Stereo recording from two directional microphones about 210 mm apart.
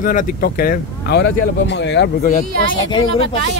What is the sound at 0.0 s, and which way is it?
Speech, 40° left (ahead or behind).